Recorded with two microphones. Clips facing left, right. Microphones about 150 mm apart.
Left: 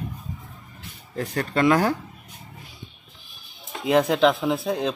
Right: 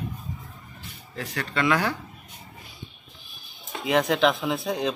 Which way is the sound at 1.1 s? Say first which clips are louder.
Left 5 dB; 40° left (ahead or behind).